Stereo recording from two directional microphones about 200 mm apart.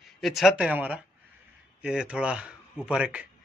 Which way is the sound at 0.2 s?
Centre (ahead or behind).